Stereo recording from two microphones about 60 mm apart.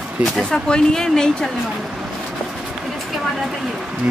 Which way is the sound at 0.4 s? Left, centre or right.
Centre.